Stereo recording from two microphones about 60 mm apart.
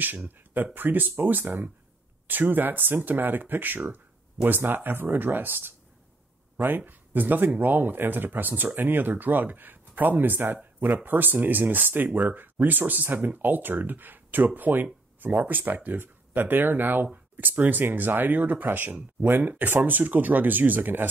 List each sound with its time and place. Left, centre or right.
0.7 s speech: right
6.9 s speech: right